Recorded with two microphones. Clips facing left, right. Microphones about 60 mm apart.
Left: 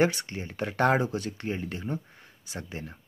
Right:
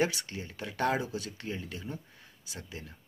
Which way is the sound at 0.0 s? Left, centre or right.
Left.